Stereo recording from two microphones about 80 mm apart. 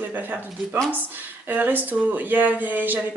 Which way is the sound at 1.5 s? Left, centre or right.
Right.